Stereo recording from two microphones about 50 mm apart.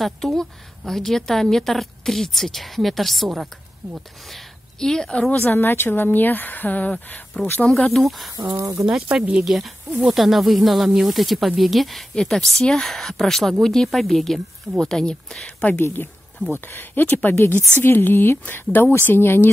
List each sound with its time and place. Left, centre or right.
0.0 s a woman's voice: centre
5.4 s speech: left
7.9 s a woman's voice: centre
8.4 s speech: right
8.8 s a woman's voice: centre
15.7 s speech: left
16.6 s speech: left
17.4 s speech: left